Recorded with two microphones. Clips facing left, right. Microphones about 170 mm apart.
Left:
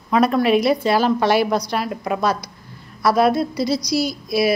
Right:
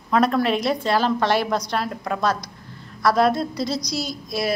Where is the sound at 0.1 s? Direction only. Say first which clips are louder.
Left 3 dB; 5° left (ahead or behind).